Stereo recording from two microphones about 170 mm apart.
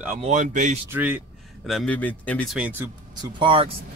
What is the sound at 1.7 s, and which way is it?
Speech, 5° left (ahead or behind).